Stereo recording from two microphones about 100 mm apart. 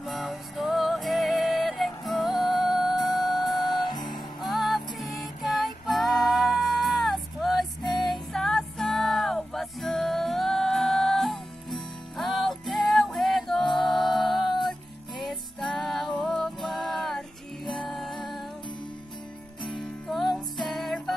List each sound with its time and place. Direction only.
0.0 s music: centre (ahead or behind)
3.1 s music: 45° left (ahead or behind)
4.1 s music: centre (ahead or behind)
19.8 s music: centre (ahead or behind)